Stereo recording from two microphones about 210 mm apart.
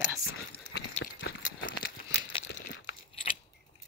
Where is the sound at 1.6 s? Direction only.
45° left (ahead or behind).